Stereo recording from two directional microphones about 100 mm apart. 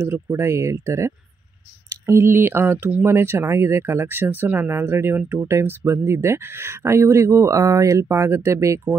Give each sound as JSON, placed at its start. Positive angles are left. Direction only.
{"t": 0.0, "sound": "speech", "side_deg": -25}